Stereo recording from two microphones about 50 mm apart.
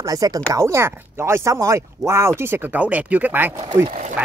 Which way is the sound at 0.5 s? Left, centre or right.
Right.